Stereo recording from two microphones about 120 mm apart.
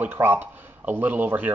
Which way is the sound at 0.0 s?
15° right (ahead or behind).